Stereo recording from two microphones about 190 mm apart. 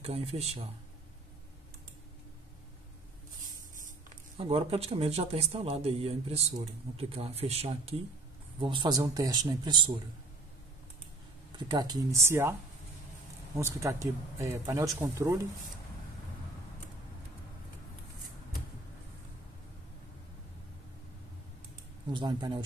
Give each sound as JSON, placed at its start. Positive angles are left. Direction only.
{"t": 0.0, "sound": "speech", "side_deg": -30}
{"t": 4.4, "sound": "speech", "side_deg": -30}
{"t": 11.5, "sound": "speech", "side_deg": -20}
{"t": 13.6, "sound": "speech", "side_deg": -15}
{"t": 22.1, "sound": "speech", "side_deg": -25}